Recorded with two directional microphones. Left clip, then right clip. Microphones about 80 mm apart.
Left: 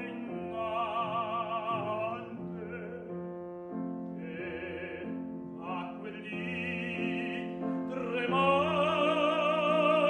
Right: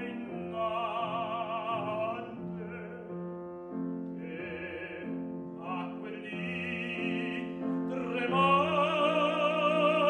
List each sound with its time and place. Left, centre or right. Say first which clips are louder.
0.6 s music: right 1 dB; left
6.4 s music: even; left
7.9 s music: even; left